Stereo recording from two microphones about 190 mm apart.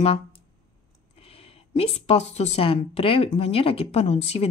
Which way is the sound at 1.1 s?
30° left (ahead or behind).